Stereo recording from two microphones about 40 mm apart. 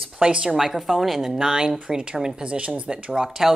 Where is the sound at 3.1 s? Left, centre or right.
Centre.